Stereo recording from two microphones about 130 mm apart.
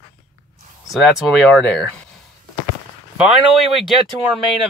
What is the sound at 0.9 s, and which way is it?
Speech, centre (ahead or behind).